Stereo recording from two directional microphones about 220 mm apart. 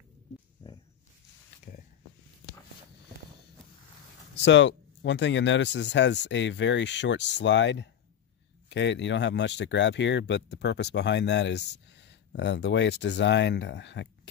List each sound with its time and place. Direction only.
4.4 s speech: 55° left (ahead or behind)